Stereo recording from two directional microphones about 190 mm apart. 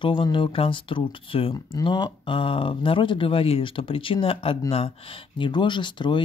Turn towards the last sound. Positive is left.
turn(degrees=25)  # may be behind; listen again after turning